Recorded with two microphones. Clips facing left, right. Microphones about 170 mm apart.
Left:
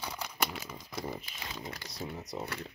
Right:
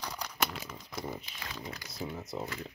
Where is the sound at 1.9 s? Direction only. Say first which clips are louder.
Right 3 dB; centre (ahead or behind).